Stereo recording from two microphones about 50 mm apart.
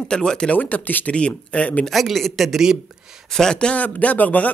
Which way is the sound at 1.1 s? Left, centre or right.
Left.